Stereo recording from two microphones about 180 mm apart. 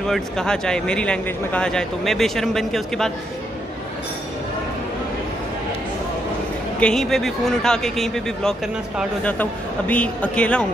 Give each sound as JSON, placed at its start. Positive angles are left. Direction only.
{"t": 0.1, "sound": "speech", "side_deg": 5}
{"t": 6.8, "sound": "speech", "side_deg": 5}